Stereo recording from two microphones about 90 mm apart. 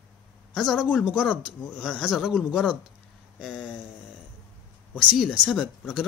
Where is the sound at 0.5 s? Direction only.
Centre (ahead or behind).